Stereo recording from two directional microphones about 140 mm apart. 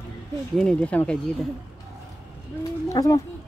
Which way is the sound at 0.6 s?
5° left (ahead or behind).